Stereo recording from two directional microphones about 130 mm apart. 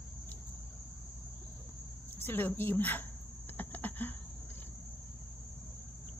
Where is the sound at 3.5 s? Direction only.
15° left (ahead or behind).